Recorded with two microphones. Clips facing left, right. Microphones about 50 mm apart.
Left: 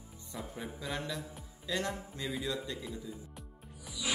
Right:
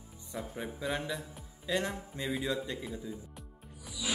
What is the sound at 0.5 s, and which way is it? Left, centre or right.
Music, centre.